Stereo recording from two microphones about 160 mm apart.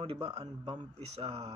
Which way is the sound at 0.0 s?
30° right (ahead or behind).